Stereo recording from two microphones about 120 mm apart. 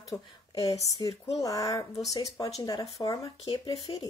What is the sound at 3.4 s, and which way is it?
Speech, 45° left (ahead or behind).